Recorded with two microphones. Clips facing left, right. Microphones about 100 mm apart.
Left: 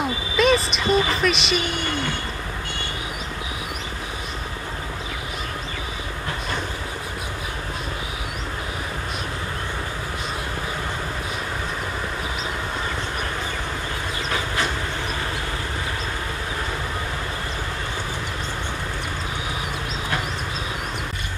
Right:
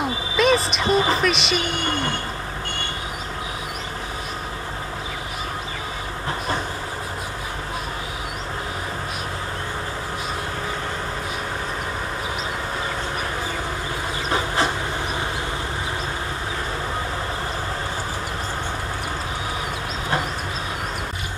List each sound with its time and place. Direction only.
0.0 s a sound: centre (ahead or behind)
0.8 s a woman's voice: 35° right (ahead or behind)
1.2 s speech: centre (ahead or behind)
14.3 s train: 25° right (ahead or behind)